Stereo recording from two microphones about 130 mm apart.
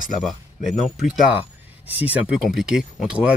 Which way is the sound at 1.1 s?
5° right (ahead or behind).